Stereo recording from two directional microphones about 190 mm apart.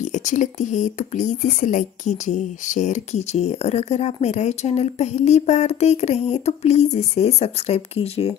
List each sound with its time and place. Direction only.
0.0 s speech: 40° left (ahead or behind)